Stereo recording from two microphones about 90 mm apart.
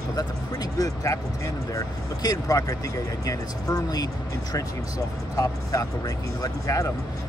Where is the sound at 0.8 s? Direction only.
35° left (ahead or behind).